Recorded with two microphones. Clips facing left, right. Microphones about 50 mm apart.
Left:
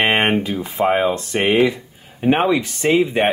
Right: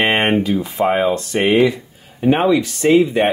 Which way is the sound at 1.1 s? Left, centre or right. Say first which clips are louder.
Right 3 dB; centre.